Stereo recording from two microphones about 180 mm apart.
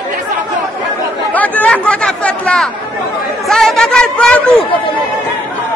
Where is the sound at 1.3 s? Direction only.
10° left (ahead or behind).